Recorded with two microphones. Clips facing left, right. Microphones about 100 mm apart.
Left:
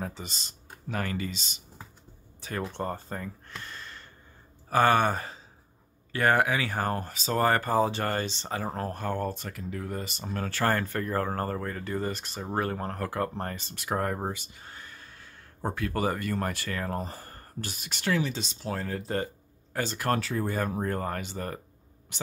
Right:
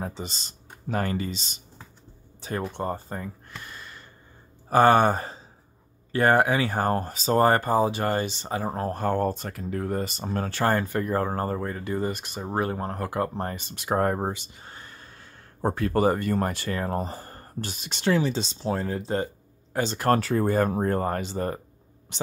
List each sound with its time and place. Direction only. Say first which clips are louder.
0.0 s speech: right 3 dB; 25° right (ahead or behind)
2.7 s speech: right 3 dB; 15° right (ahead or behind)
4.6 s speech: right 5 dB; 30° right (ahead or behind)
7.7 s speech: right 3 dB; 15° right (ahead or behind)
8.8 s speech: right 6 dB; 35° right (ahead or behind)
10.5 s speech: right 3 dB; 20° right (ahead or behind)
13.8 s speech: right 6 dB; 35° right (ahead or behind)
14.2 s speech: right 4 dB; 25° right (ahead or behind)
20.1 s speech: right 7 dB; 45° right (ahead or behind); by 22.3 s 30° right (ahead or behind)